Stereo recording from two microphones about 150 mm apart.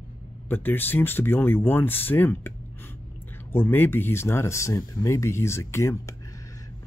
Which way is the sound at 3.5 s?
15° left (ahead or behind).